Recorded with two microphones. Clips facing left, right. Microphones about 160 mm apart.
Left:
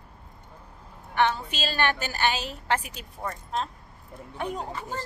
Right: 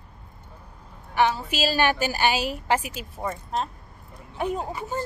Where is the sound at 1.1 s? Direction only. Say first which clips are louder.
Right 2 dB; 5° right (ahead or behind).